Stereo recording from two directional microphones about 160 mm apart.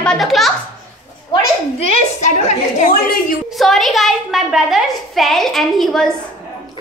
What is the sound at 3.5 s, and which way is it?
A woman's voice, centre (ahead or behind).